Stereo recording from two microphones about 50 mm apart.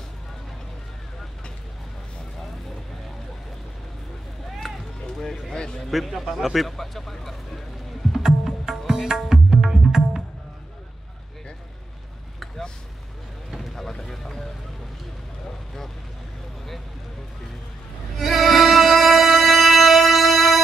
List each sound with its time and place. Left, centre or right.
4.6 s run: centre
5.0 s a sound: centre
5.9 s speech: centre
8.1 s music: centre
13.5 s boat: centre
18.2 s music: centre